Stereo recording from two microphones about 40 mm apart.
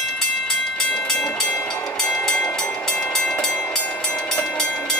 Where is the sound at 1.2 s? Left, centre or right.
Centre.